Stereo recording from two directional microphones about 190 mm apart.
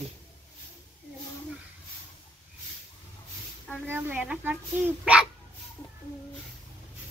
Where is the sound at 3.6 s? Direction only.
5° left (ahead or behind).